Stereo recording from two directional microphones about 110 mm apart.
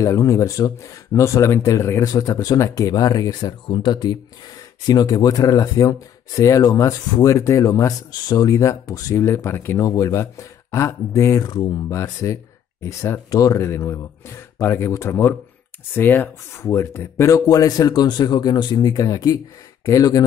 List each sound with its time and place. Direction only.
0.0 s speech: 30° left (ahead or behind)
3.6 s speech: 50° left (ahead or behind); by 9.8 s 20° left (ahead or behind)
9.8 s speech: 30° left (ahead or behind)